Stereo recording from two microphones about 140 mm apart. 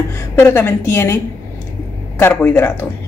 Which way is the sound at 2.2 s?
15° left (ahead or behind).